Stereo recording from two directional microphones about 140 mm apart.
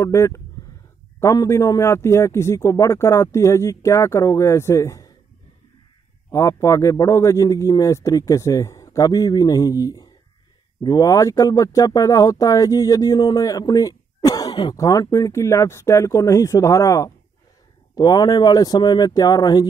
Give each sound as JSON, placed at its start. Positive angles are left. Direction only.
{"t": 0.0, "sound": "speech", "side_deg": 20}
{"t": 6.3, "sound": "speech", "side_deg": 25}